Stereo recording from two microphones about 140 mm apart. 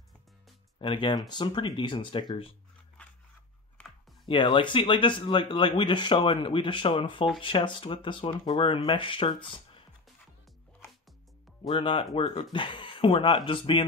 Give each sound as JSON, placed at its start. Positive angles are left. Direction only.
{"t": 0.7, "sound": "speech", "side_deg": 35}
{"t": 4.3, "sound": "speech", "side_deg": 35}
{"t": 11.6, "sound": "speech", "side_deg": 40}